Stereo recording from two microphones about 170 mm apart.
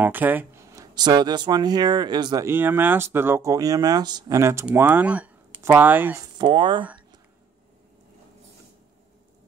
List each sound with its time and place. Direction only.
0.0 s speech: 10° right (ahead or behind)
6.3 s speech: 30° right (ahead or behind)